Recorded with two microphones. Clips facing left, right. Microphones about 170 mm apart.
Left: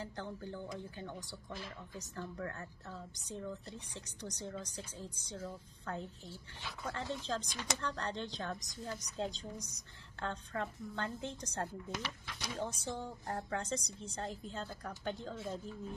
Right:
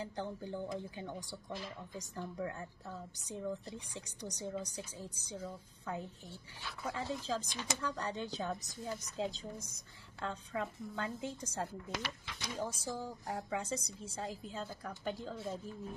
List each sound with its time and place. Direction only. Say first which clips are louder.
0.0 s a woman's voice: right 2 dB; 15° right (ahead or behind)
11.9 s speech: right 1 dB; 90° right
12.5 s speech: right 1 dB; 5° right (ahead or behind)